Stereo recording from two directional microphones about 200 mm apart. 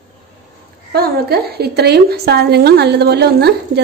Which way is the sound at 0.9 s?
50° right (ahead or behind).